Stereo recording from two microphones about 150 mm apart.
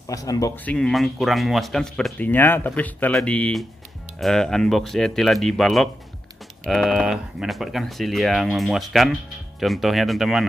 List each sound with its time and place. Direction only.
0.0 s speech: 25° left (ahead or behind)
0.7 s speech: 5° left (ahead or behind)